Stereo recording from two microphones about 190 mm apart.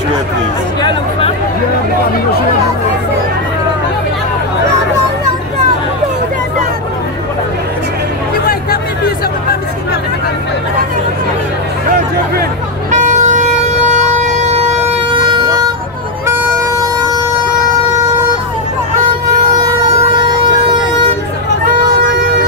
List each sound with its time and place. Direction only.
8.5 s hubbub: 50° left (ahead or behind)
12.9 s vehicle: 40° right (ahead or behind)
16.3 s vehicle: 15° right (ahead or behind)